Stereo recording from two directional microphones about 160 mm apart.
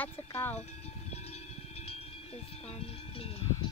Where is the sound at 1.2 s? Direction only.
40° left (ahead or behind).